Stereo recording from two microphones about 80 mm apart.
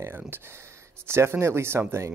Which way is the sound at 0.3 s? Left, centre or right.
Right.